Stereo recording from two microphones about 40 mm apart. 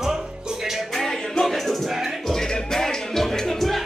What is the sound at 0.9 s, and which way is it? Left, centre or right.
Music, centre.